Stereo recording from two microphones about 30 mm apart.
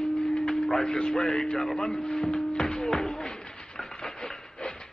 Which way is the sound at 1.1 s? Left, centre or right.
Left.